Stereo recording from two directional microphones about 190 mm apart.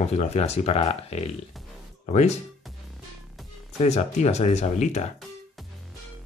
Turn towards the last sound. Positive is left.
turn(degrees=35)  # may be behind; listen again after turning